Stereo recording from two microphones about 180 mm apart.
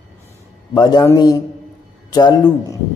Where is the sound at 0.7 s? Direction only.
20° left (ahead or behind).